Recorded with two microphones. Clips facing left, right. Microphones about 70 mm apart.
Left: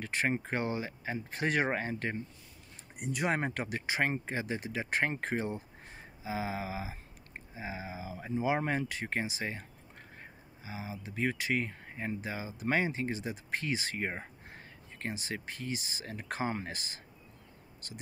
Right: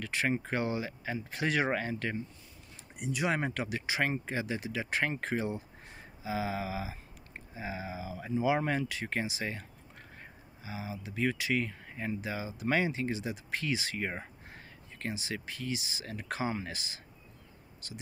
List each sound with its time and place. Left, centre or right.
0.0 s speech: left
3.0 s speech: left